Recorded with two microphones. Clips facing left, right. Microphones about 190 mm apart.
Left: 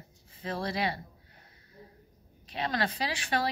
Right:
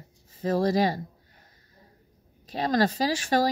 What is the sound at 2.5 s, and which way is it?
Speech, 40° right (ahead or behind).